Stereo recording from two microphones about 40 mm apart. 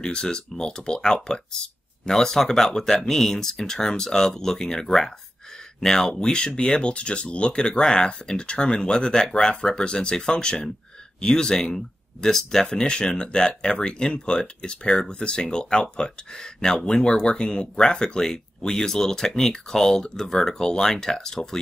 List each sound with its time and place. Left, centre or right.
0.0 s speech: centre